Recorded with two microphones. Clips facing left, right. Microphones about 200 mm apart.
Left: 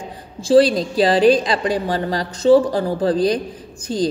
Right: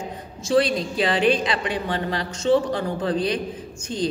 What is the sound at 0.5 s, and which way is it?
A woman's voice, 35° left (ahead or behind).